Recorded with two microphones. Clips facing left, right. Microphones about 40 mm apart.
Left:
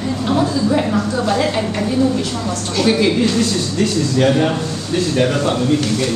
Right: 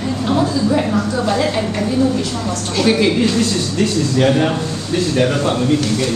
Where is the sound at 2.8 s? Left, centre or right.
Centre.